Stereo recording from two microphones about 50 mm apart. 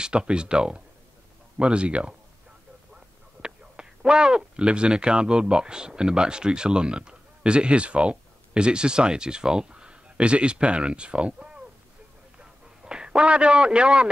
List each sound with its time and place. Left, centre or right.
0.0 s speech: centre
3.4 s speech: centre
12.4 s a sound: centre